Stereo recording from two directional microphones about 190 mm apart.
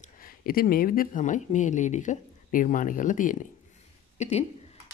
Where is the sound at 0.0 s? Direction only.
50° left (ahead or behind).